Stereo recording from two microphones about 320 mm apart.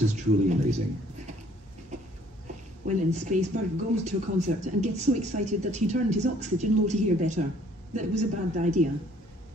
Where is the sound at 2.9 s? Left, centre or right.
Right.